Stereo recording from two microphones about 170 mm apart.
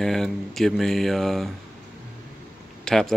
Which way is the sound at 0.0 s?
Centre (ahead or behind).